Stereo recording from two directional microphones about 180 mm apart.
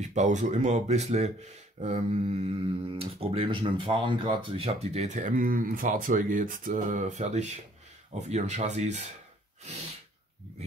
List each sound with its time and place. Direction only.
0.0 s speech: 40° right (ahead or behind)